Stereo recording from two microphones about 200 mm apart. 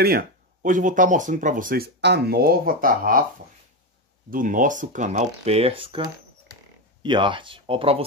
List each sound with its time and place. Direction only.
0.0 s speech: 50° right (ahead or behind)
4.3 s speech: 40° right (ahead or behind)